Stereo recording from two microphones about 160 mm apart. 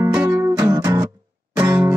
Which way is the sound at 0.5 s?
20° right (ahead or behind).